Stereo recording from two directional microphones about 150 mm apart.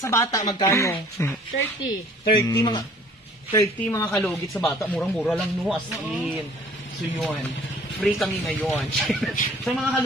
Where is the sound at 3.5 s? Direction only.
15° left (ahead or behind).